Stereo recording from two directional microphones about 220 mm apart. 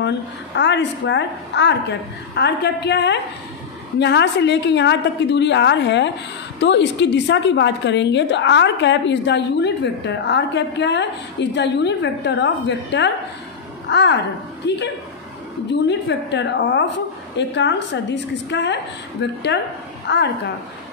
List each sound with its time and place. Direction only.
0.6 s a woman's voice: 55° left (ahead or behind)
15.9 s a woman's voice: 50° left (ahead or behind)